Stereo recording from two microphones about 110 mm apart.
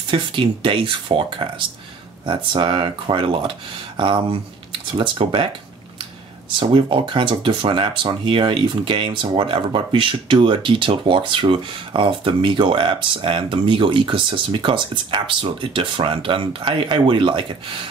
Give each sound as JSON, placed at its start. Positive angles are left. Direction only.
{"t": 0.1, "sound": "speech", "side_deg": -50}
{"t": 6.6, "sound": "speech", "side_deg": -50}